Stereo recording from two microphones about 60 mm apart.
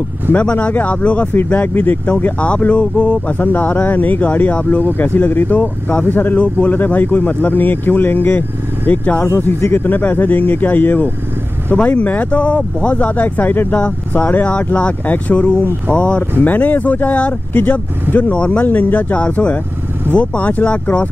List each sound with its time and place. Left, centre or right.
0.3 s speech: left
1.3 s speech: left
4.6 s speech: left; by 21.1 s centre